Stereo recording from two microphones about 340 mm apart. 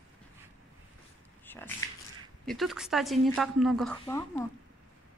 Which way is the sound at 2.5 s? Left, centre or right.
Centre.